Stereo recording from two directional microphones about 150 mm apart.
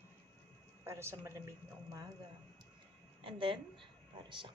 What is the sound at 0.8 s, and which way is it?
Speech, 15° right (ahead or behind).